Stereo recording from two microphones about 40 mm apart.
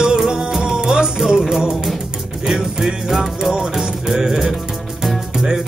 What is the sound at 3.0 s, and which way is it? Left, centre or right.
Music, centre.